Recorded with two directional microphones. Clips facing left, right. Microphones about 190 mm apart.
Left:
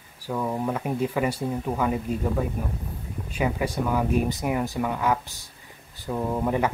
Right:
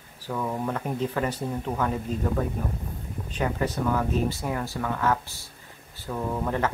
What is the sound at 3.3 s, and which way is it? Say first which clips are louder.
Speech: left 1 dB; 10° left (ahead or behind).